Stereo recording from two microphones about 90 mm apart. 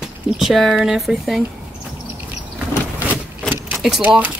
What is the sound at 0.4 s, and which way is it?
Speech, centre (ahead or behind).